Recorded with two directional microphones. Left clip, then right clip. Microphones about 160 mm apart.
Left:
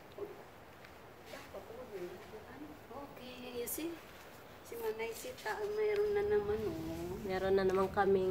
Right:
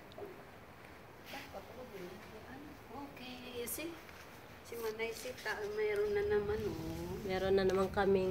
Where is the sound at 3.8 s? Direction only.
30° left (ahead or behind).